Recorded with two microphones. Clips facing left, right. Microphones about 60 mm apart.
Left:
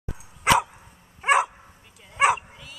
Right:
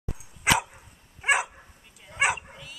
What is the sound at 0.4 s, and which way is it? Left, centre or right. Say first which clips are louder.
Dog: left 4 dB; centre.